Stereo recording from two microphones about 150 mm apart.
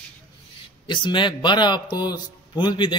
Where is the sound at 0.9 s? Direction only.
30° left (ahead or behind).